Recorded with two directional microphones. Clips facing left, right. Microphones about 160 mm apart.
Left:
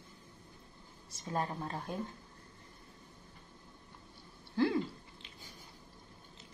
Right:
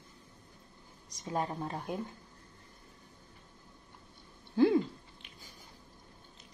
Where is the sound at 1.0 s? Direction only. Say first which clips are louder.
Right 2 dB; 15° right (ahead or behind).